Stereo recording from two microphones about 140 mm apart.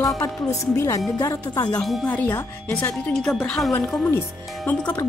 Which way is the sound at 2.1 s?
10° left (ahead or behind).